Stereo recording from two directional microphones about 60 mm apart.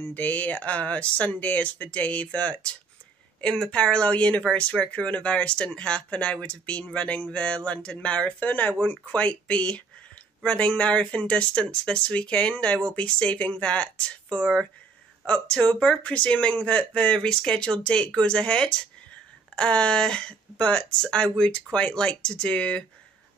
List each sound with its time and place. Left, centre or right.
0.0 s speech: left